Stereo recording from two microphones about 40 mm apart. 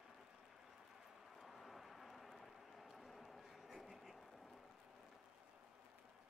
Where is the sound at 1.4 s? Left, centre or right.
Centre.